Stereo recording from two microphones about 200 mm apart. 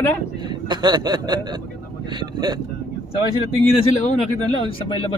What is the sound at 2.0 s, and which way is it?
Vehicle, 20° right (ahead or behind).